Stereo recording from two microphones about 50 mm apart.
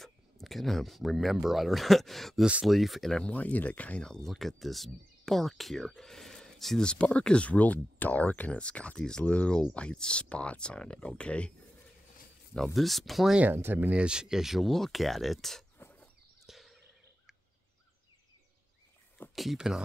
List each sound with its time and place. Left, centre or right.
0.0 s speech: centre
3.3 s speech: left
4.0 s speech: centre
6.8 s speech: centre
9.2 s speech: left
12.5 s speech: centre
13.5 s speech: right
13.9 s speech: centre
16.4 s a sound: centre
19.3 s speech: centre